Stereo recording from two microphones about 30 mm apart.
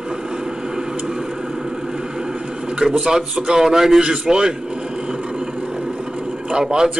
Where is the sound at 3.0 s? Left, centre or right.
Right.